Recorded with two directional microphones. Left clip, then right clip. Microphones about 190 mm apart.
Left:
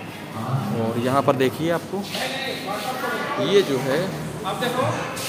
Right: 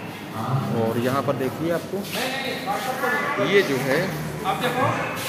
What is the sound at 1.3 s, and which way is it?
Speech, 60° left (ahead or behind).